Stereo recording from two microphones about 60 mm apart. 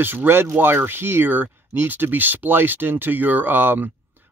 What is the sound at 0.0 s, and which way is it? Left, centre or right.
Speech, right.